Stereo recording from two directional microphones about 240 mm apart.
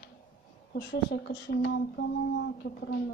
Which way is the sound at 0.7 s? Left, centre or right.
Left.